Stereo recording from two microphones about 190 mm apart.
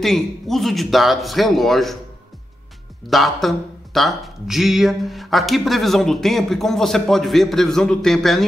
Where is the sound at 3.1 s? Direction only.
Centre (ahead or behind).